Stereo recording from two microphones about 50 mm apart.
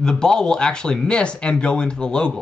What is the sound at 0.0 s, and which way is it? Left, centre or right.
Speech, centre.